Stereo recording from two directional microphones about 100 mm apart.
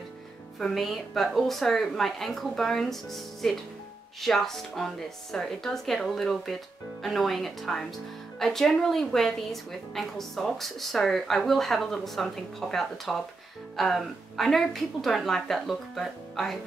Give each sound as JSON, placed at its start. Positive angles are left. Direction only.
{"t": 0.6, "sound": "a woman's voice", "side_deg": 0}